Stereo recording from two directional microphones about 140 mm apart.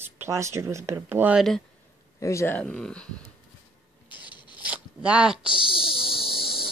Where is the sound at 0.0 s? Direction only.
20° right (ahead or behind).